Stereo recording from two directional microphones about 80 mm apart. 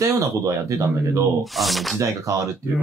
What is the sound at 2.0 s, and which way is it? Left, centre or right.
Speech, right.